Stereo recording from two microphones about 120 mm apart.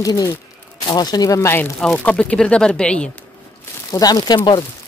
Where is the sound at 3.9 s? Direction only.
35° left (ahead or behind).